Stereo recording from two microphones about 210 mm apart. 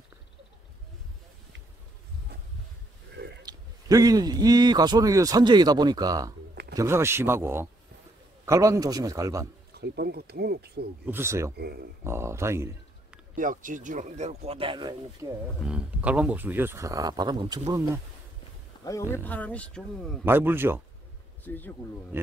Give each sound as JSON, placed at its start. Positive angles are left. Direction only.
{"t": 3.4, "sound": "a man's voice", "side_deg": -15}
{"t": 9.8, "sound": "speech", "side_deg": -50}
{"t": 11.1, "sound": "speech", "side_deg": -10}
{"t": 11.5, "sound": "speech", "side_deg": -50}
{"t": 12.0, "sound": "a man's voice", "side_deg": -10}
{"t": 13.4, "sound": "speech", "side_deg": -40}
{"t": 15.6, "sound": "speech", "side_deg": -5}
{"t": 19.1, "sound": "speech", "side_deg": 5}
{"t": 20.2, "sound": "speech", "side_deg": -10}
{"t": 21.5, "sound": "speech", "side_deg": 10}
{"t": 22.1, "sound": "speech", "side_deg": -10}